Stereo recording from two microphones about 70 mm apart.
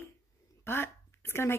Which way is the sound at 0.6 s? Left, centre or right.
Left.